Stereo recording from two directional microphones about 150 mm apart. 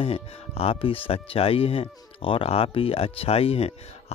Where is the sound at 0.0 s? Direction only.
40° left (ahead or behind).